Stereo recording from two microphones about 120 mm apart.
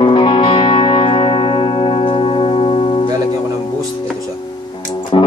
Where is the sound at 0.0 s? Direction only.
40° left (ahead or behind).